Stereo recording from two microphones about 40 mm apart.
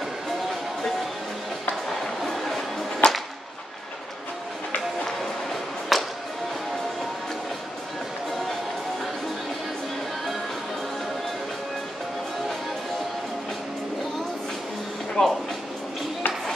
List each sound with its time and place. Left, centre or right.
1.9 s a sound: centre
3.0 s whip: left
5.0 s music: centre
8.3 s music: centre
15.2 s music: left